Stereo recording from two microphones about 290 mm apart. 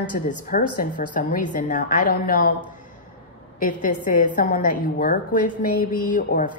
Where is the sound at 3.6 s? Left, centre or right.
Left.